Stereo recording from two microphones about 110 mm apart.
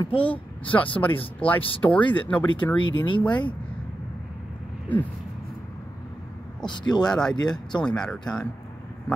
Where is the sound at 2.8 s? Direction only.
45° left (ahead or behind).